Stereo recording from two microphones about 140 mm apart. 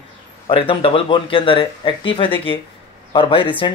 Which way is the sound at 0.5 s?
40° left (ahead or behind).